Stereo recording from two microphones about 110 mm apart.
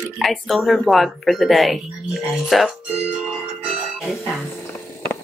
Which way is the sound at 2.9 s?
5° right (ahead or behind).